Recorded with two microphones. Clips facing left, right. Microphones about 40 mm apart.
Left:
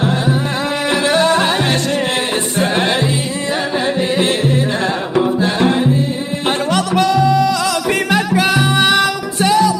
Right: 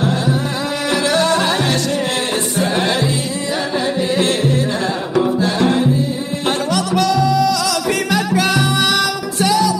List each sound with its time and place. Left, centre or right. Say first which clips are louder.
0.8 s music: left 2 dB; left
5.1 s music: even; left